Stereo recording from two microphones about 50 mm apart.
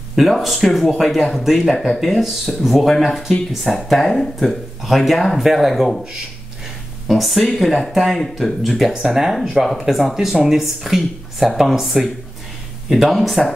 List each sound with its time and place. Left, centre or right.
0.1 s speech: centre
7.1 s speech: centre
8.9 s speech: centre